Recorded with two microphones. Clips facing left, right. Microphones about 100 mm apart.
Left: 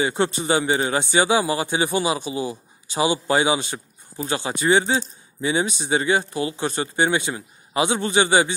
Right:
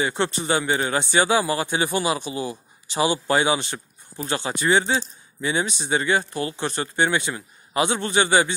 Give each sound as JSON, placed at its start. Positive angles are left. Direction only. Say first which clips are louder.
{"t": 0.0, "sound": "speech", "louder": "left 2 dB", "side_deg": 20}